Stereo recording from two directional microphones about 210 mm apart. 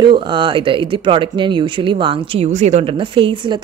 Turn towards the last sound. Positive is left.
turn(degrees=-25)  # may be behind; listen again after turning